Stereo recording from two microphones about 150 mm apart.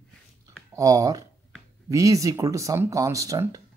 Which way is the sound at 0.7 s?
25° right (ahead or behind).